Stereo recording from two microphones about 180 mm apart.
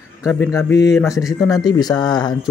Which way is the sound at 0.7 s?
70° left (ahead or behind).